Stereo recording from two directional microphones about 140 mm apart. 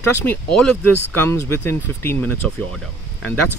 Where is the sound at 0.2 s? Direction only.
10° left (ahead or behind).